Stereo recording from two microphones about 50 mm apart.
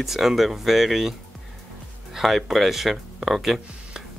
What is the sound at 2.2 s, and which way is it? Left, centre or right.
Speech, centre.